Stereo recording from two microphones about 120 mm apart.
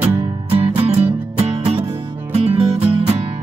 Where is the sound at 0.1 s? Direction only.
45° right (ahead or behind).